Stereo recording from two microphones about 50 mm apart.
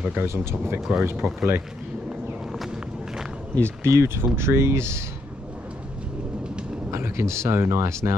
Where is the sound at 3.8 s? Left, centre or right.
Right.